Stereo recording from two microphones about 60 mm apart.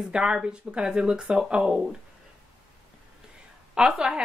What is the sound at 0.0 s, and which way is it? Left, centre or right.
A woman's voice, centre.